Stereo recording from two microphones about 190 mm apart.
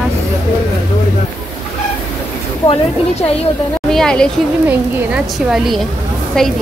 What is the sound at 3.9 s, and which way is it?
A woman's voice, 5° left (ahead or behind).